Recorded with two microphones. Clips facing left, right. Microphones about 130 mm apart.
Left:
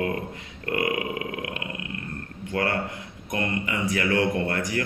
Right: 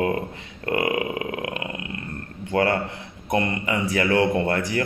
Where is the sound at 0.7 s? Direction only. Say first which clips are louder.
Right 3 dB; 25° right (ahead or behind).